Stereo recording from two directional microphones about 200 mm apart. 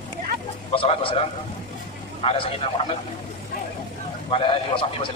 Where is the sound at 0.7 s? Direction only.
25° left (ahead or behind).